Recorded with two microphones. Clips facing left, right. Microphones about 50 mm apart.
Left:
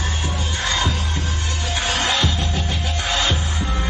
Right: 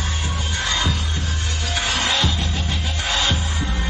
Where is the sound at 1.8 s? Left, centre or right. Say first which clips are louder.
Left 1 dB; left.